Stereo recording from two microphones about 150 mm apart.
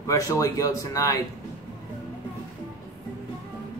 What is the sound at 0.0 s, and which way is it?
A man's voice, 20° left (ahead or behind).